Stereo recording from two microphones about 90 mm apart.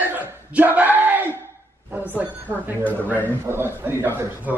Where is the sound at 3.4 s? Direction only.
25° right (ahead or behind).